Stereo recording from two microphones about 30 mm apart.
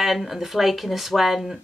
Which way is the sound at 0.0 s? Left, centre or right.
Centre.